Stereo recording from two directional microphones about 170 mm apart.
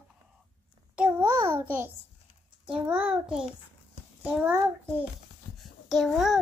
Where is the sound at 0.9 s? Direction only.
10° right (ahead or behind).